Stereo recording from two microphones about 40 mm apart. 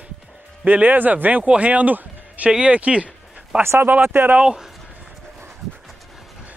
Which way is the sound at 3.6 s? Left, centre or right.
Right.